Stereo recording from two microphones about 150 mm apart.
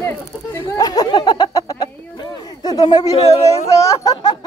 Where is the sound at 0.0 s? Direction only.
15° left (ahead or behind).